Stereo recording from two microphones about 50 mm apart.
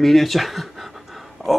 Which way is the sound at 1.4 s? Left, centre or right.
Centre.